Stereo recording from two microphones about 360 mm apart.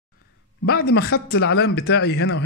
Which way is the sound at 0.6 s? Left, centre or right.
Left.